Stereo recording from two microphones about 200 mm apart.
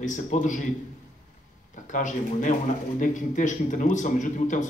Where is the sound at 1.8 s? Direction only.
40° left (ahead or behind).